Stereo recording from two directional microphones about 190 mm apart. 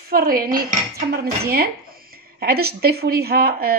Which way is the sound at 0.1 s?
50° right (ahead or behind).